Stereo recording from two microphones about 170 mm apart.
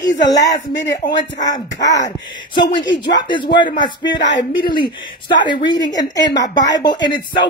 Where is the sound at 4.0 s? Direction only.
85° left.